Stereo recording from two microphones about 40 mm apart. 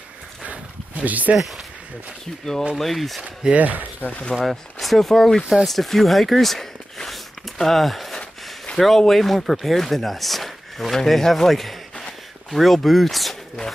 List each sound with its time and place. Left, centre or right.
0.5 s a sound: right
2.7 s speech: centre
3.5 s speech: right
4.1 s speech: left
4.4 s speech: centre